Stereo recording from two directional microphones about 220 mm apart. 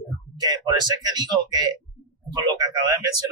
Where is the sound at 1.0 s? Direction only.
15° right (ahead or behind).